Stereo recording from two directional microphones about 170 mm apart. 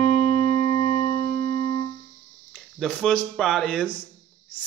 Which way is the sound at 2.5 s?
5° left (ahead or behind).